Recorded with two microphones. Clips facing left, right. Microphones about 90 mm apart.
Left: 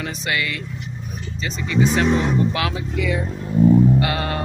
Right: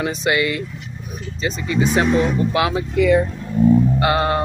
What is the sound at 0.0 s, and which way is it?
Speech, 20° right (ahead or behind).